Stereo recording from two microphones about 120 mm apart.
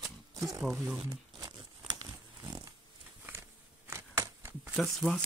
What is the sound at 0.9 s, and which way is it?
Crumpling, 35° right (ahead or behind).